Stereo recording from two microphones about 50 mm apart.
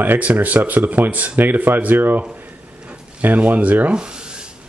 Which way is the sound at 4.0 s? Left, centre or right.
Centre.